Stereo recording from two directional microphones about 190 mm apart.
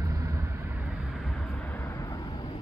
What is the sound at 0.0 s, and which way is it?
Vehicle, 15° right (ahead or behind).